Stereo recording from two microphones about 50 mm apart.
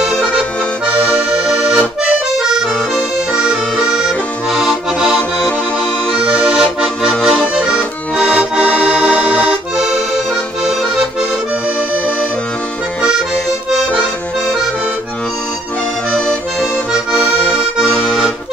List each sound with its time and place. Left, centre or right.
1.0 s accordion: centre
6.2 s accordion: centre
8.2 s accordion: right
10.1 s accordion: centre